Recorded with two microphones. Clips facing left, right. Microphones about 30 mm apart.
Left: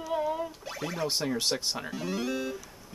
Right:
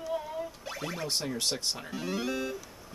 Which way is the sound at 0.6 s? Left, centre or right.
Centre.